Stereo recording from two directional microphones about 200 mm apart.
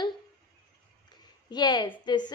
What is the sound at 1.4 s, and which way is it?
Speech, 20° left (ahead or behind).